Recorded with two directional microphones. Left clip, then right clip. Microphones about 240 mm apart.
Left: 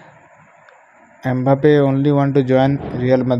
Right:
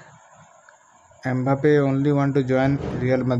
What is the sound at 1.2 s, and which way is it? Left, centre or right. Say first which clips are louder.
A man's voice: left 6 dB; centre.